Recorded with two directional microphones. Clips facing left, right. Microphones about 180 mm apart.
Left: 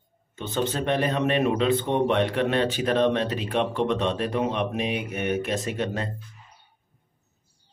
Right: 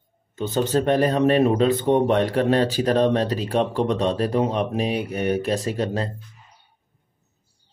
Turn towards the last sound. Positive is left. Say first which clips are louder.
# right 4 dB
turn(degrees=-35)  # may be behind; listen again after turning